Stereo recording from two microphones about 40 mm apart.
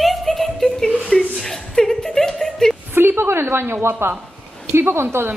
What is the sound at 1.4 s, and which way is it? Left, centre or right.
Speech, centre.